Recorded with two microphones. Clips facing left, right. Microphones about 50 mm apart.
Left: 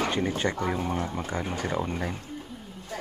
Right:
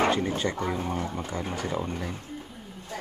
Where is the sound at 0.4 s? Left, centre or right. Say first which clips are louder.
Left 1 dB; left.